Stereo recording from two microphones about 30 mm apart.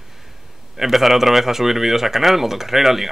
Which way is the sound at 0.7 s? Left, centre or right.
Centre.